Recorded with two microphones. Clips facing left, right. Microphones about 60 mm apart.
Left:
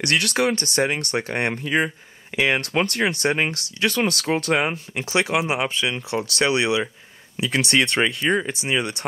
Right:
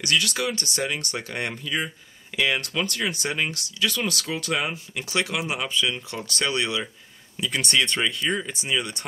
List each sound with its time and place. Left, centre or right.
0.0 s speech: left
2.6 s speech: left
4.6 s speech: left
8.0 s speech: left